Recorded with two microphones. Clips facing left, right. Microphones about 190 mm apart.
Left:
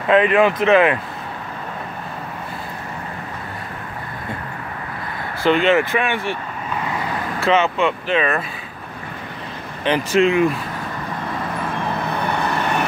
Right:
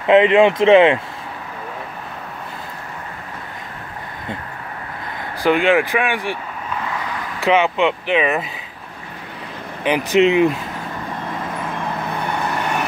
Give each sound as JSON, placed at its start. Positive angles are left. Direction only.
{"t": 0.1, "sound": "speech", "side_deg": -25}
{"t": 5.4, "sound": "speech", "side_deg": -10}
{"t": 7.3, "sound": "speech", "side_deg": -15}
{"t": 9.8, "sound": "speech", "side_deg": -15}